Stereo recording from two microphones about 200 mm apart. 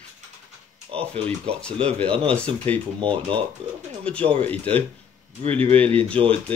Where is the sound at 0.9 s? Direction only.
30° right (ahead or behind).